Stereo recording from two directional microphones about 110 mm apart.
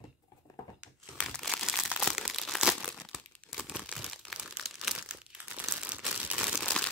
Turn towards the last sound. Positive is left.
turn(degrees=0)  # may be behind; listen again after turning